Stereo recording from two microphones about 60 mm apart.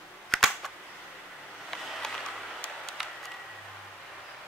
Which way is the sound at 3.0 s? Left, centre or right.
Centre.